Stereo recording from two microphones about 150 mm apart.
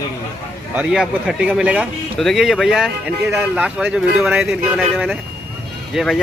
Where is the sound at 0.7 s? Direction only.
5° right (ahead or behind).